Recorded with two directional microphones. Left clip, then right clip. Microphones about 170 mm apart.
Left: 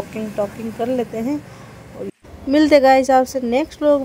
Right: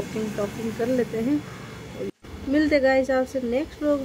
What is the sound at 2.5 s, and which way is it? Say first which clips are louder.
Speech: left 8 dB; 40° left (ahead or behind).